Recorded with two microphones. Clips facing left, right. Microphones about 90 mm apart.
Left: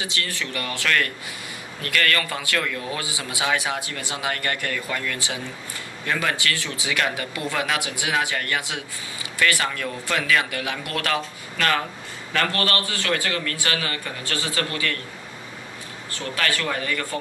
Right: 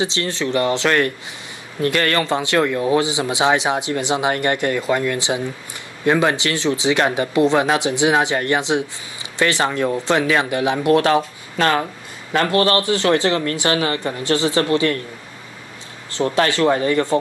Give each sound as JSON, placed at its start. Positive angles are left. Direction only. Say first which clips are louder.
{"t": 0.0, "sound": "speech", "louder": "right 8 dB", "side_deg": -25}
{"t": 16.1, "sound": "speech", "louder": "right 9 dB", "side_deg": -25}